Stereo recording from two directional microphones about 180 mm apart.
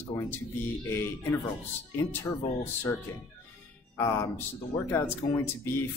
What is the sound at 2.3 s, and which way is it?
Speech, 15° left (ahead or behind).